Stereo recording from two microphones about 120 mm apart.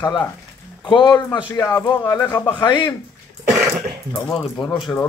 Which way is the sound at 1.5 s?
25° left (ahead or behind).